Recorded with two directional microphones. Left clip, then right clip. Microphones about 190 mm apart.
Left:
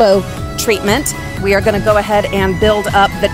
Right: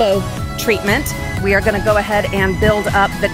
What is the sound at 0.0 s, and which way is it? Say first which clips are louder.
Speech: left 5 dB; 25° left (ahead or behind).